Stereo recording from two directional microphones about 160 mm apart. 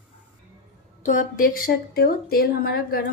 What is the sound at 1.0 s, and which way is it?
A woman's voice, 55° left (ahead or behind).